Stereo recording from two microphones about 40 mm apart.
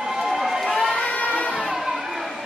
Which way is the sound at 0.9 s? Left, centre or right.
Left.